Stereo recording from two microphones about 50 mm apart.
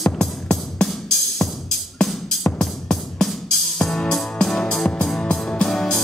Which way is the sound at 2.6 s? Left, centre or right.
Centre.